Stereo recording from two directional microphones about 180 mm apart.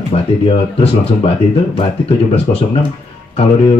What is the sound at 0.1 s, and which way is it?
Speech, 35° left (ahead or behind).